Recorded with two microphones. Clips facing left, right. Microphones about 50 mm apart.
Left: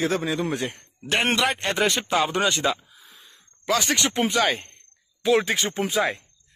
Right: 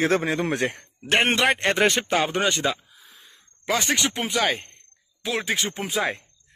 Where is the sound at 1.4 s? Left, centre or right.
Right.